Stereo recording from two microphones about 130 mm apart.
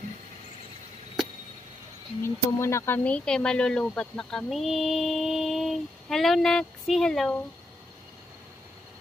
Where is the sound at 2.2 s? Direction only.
20° left (ahead or behind).